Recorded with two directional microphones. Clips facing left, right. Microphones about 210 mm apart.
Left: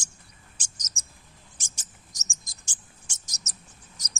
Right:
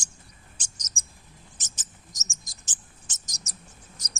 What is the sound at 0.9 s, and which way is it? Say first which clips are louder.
Bird: right 2 dB; 20° left (ahead or behind).